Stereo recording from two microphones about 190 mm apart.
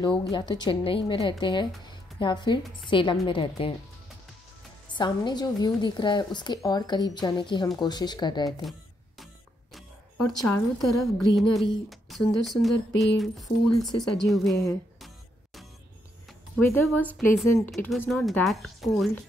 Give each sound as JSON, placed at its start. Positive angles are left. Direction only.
{"t": 0.0, "sound": "a woman's voice", "side_deg": 25}
{"t": 1.9, "sound": "music", "side_deg": 25}
{"t": 2.8, "sound": "a woman's voice", "side_deg": 25}
{"t": 4.9, "sound": "a woman's voice", "side_deg": 25}
{"t": 9.2, "sound": "music", "side_deg": 0}
{"t": 11.9, "sound": "speech", "side_deg": 0}
{"t": 16.5, "sound": "speech", "side_deg": 10}